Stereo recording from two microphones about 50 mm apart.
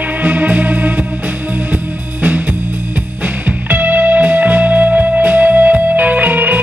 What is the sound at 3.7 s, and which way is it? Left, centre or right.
Music, right.